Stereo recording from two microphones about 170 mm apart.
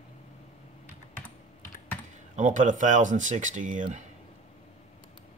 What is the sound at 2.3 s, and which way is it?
Speech, 50° right (ahead or behind).